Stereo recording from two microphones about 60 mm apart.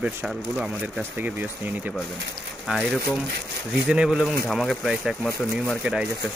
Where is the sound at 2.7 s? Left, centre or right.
Centre.